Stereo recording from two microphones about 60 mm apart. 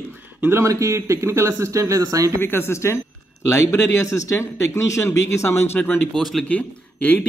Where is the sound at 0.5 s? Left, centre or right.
Right.